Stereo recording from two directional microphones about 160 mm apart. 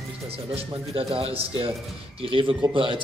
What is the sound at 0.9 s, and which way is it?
A man's voice, 35° right (ahead or behind).